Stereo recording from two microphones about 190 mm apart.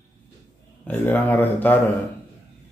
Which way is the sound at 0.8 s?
10° left (ahead or behind).